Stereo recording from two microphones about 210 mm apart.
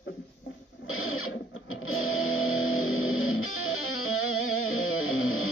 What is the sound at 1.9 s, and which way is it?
Music, 75° left (ahead or behind).